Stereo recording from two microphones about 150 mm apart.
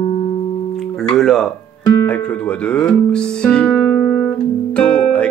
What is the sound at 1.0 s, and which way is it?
Speech, centre (ahead or behind).